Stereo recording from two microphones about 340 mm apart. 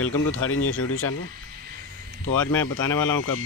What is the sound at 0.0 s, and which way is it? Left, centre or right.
Speech, left.